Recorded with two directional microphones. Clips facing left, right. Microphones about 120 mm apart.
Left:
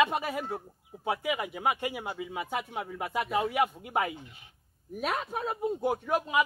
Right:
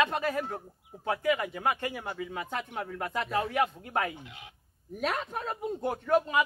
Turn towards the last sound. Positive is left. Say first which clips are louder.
# right 2 dB
turn(degrees=10)  # may be behind; listen again after turning